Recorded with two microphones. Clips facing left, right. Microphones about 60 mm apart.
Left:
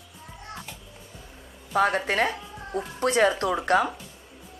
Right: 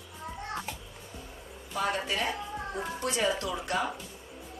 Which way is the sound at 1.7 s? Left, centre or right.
Left.